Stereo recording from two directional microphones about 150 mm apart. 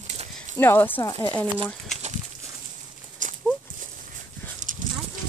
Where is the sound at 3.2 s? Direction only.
60° right (ahead or behind).